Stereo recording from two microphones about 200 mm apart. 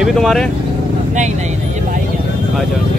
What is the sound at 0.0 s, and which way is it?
Speech, centre (ahead or behind).